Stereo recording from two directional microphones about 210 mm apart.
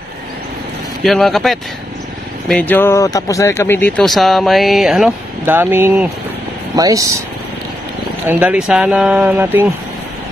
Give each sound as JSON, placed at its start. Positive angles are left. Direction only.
{"t": 1.0, "sound": "speech", "side_deg": 0}
{"t": 8.3, "sound": "speech", "side_deg": -5}